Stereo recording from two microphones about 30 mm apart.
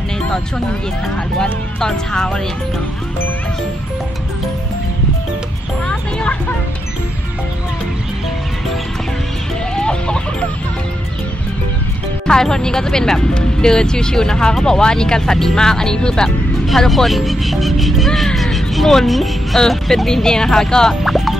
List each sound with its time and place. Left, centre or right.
1.4 s speech: left
9.8 s chicken: left
12.3 s speech: centre
16.6 s speech: centre
19.5 s speech: centre
21.0 s speech: centre